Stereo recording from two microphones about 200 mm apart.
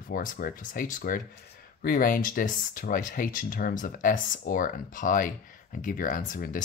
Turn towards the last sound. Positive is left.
turn(degrees=40)  # may be behind; listen again after turning